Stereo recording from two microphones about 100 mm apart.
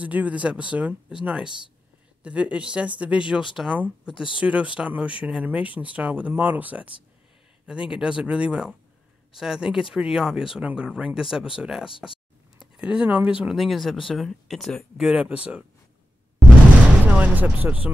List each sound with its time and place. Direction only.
0.0 s speech: 15° right (ahead or behind)
7.9 s speech: 10° right (ahead or behind)
15.0 s speech: 10° right (ahead or behind)
17.0 s speech: 15° right (ahead or behind)